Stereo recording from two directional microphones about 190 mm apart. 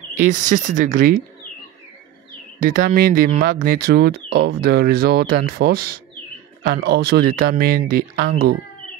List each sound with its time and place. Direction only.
0.3 s speech: 40° right (ahead or behind)
2.6 s speech: 50° right (ahead or behind)